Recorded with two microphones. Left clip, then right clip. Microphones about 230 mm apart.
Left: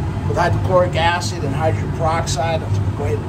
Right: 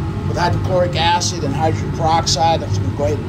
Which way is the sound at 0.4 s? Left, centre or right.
Centre.